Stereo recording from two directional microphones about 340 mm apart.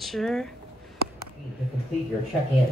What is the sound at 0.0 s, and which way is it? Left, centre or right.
Speech, centre.